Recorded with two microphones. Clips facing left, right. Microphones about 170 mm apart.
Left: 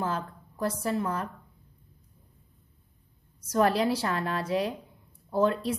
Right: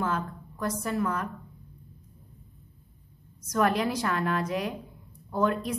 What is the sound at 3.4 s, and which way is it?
A woman's voice, 30° left (ahead or behind).